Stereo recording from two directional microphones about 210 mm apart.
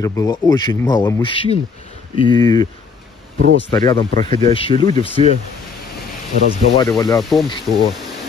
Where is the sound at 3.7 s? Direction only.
25° left (ahead or behind).